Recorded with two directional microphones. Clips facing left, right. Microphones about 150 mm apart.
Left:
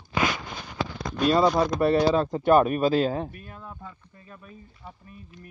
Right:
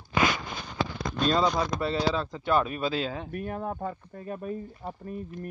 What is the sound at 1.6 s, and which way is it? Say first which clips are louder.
Speech: left 6 dB; 55° left (ahead or behind).